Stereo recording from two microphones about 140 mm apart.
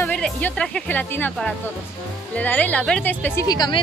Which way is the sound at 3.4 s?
30° left (ahead or behind).